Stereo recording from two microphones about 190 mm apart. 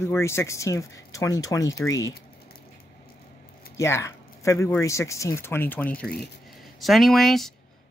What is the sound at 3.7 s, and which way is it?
Speech, 15° left (ahead or behind).